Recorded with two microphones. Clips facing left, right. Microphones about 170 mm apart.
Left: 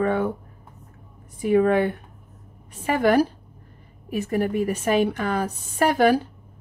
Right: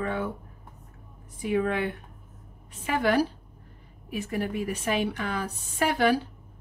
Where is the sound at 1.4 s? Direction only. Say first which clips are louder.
Left 8 dB; 45° left (ahead or behind).